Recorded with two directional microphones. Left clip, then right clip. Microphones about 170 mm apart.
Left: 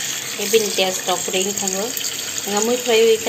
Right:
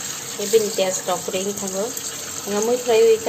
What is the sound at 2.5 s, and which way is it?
Speech, 5° left (ahead or behind).